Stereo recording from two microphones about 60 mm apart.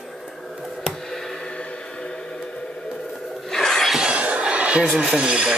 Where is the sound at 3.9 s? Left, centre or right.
Centre.